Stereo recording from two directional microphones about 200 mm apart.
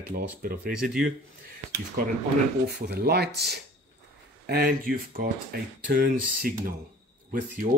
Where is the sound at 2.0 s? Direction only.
45° right (ahead or behind).